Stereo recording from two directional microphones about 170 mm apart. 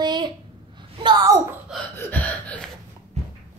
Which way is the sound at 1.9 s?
10° left (ahead or behind).